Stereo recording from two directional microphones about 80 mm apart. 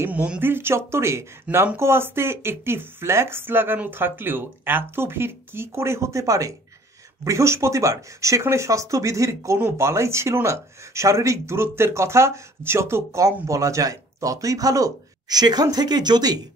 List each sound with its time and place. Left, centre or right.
0.1 s speech: centre; by 16.4 s right